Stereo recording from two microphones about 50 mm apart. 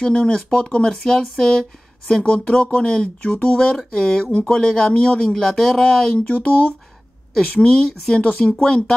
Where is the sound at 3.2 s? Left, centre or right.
Left.